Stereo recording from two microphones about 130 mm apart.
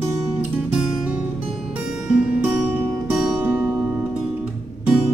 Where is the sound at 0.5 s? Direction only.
10° right (ahead or behind).